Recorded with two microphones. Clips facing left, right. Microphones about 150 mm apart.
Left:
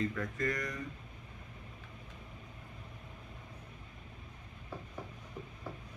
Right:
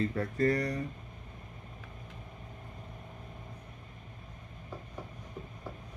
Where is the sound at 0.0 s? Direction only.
35° right (ahead or behind).